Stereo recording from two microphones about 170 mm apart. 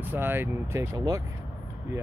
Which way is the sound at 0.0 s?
10° right (ahead or behind).